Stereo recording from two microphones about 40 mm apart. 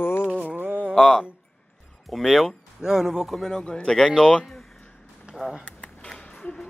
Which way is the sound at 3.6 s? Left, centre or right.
Left.